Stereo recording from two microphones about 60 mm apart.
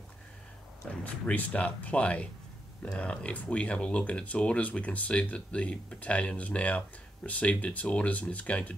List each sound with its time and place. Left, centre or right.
1.0 s speech: left